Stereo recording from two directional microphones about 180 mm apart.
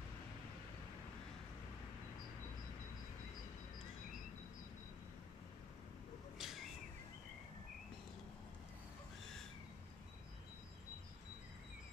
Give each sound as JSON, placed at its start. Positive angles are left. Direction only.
{"t": 6.3, "sound": "bird", "side_deg": 0}